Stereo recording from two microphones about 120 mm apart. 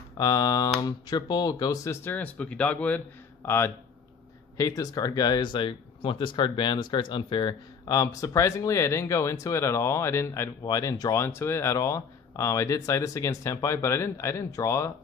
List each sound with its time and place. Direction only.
0.2 s speech: 30° left (ahead or behind)
2.0 s speech: 15° left (ahead or behind)